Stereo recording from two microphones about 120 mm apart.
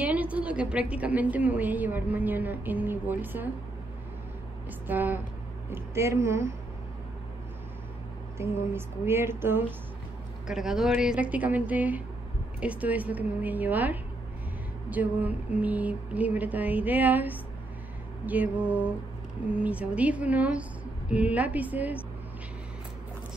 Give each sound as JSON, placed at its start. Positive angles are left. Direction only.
{"t": 0.0, "sound": "a woman's voice", "side_deg": -10}
{"t": 4.8, "sound": "a woman's voice", "side_deg": -15}
{"t": 5.7, "sound": "music", "side_deg": -25}
{"t": 8.4, "sound": "music", "side_deg": -20}
{"t": 10.4, "sound": "a woman's voice", "side_deg": -5}